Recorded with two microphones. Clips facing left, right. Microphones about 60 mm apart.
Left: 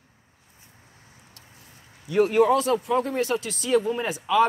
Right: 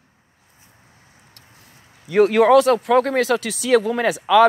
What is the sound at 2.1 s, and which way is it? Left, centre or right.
Speech, right.